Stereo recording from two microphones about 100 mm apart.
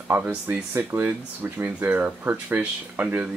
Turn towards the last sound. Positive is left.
turn(degrees=-15)  # may be behind; listen again after turning